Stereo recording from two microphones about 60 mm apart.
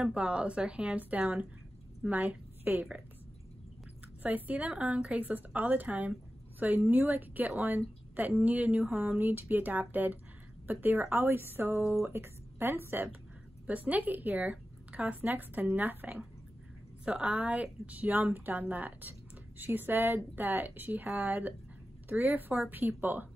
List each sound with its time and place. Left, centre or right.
0.0 s a woman's voice: centre
4.2 s a woman's voice: right
13.8 s a woman's voice: right
17.0 s a woman's voice: centre; by 23.2 s right